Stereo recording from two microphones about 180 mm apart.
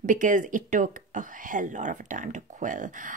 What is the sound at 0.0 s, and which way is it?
Speech, 45° right (ahead or behind).